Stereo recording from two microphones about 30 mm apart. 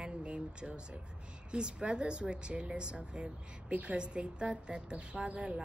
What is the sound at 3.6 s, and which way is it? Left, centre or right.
Speech, right.